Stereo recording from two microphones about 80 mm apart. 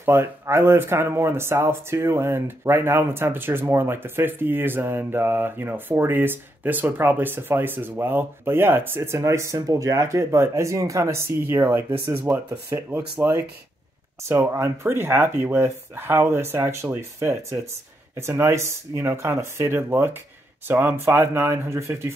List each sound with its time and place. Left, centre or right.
0.0 s speech: right
9.6 s speech: right
14.2 s speech: right